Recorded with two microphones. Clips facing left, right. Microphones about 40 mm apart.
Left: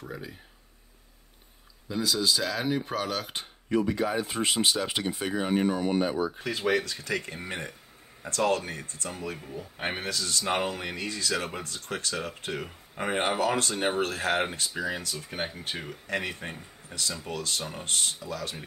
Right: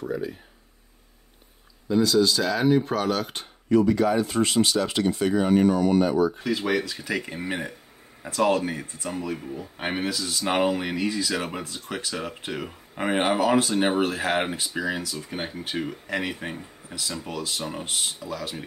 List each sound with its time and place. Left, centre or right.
0.0 s speech: centre
1.9 s speech: centre
3.7 s speech: centre
6.4 s speech: centre